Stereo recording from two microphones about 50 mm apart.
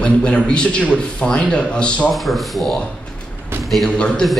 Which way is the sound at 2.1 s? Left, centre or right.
Centre.